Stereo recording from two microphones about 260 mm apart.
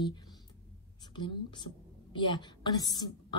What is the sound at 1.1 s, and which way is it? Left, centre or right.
A woman's voice, centre.